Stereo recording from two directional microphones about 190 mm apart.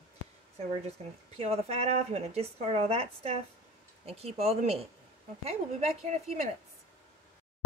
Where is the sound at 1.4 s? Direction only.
35° right (ahead or behind).